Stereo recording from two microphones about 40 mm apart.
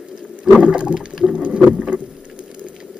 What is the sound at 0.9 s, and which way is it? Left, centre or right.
Whale vocalization, right.